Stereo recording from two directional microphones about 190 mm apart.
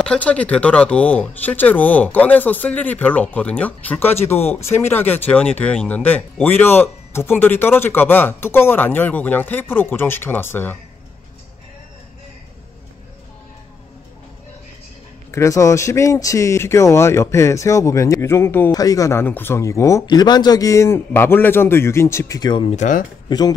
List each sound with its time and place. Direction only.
0.0 s speech: 5° left (ahead or behind)
15.3 s speech: 15° left (ahead or behind)
22.7 s speech: 40° left (ahead or behind)
23.2 s speech: 20° left (ahead or behind)